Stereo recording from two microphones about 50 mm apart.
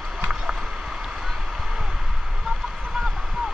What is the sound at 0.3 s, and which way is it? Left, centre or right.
Rowboat, centre.